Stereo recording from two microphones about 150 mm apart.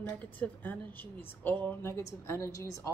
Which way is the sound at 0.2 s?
10° left (ahead or behind).